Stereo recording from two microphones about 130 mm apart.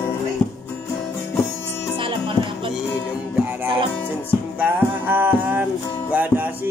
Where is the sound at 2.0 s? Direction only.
40° right (ahead or behind).